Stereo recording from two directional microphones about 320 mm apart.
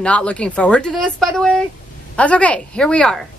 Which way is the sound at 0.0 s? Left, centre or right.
Centre.